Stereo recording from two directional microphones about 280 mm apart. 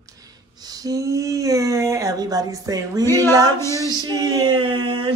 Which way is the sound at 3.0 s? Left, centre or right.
Centre.